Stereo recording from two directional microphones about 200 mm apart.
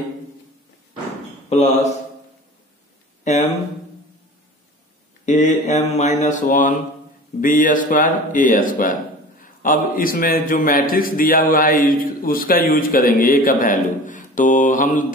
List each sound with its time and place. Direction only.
1.5 s speech: 30° left (ahead or behind)
5.2 s a man's voice: 35° left (ahead or behind)